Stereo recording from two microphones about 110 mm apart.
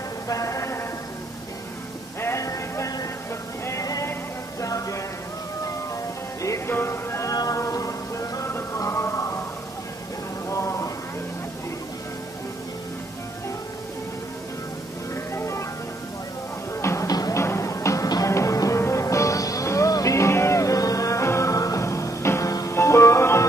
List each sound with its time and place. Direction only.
0.3 s a sound: 30° left (ahead or behind)
2.2 s music: 30° left (ahead or behind)
6.4 s music: 25° left (ahead or behind)
10.5 s a sound: 25° left (ahead or behind)
15.3 s music: 25° left (ahead or behind)
16.8 s music: 25° left (ahead or behind)